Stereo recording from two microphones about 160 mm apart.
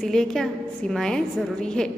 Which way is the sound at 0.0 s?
5° left (ahead or behind).